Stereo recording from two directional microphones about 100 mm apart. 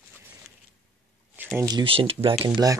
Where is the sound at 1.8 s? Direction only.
65° right (ahead or behind).